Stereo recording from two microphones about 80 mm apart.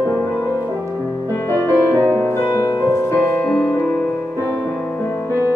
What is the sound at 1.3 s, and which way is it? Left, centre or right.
Music, left.